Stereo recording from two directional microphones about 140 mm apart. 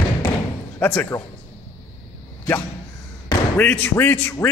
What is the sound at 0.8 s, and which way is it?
Speech, 15° left (ahead or behind).